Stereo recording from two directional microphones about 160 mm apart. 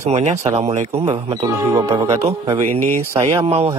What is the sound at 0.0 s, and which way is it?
Speech, 45° right (ahead or behind).